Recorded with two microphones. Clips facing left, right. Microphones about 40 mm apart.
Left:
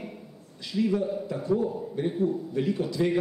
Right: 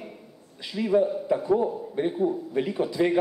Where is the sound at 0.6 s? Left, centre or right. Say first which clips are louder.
Right 4 dB; centre.